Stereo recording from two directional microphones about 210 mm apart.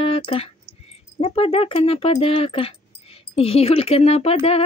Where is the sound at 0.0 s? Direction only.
25° left (ahead or behind).